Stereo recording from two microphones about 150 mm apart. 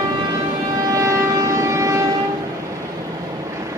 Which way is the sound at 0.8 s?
20° right (ahead or behind).